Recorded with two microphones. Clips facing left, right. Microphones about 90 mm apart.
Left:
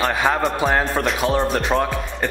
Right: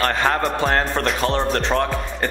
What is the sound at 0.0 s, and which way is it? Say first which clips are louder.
A man's voice: even; 5° left (ahead or behind).